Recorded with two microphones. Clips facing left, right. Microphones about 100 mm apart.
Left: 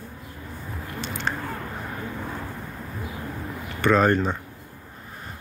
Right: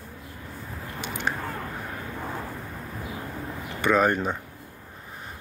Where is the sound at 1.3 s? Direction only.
10° right (ahead or behind).